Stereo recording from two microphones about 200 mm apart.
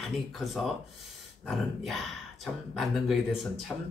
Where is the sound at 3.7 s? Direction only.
15° left (ahead or behind).